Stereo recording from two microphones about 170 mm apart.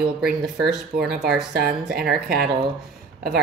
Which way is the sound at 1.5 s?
65° right (ahead or behind).